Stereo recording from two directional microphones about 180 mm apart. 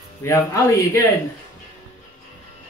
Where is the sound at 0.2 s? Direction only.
15° left (ahead or behind).